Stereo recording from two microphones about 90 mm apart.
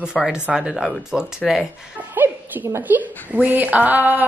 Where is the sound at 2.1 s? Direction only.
20° right (ahead or behind).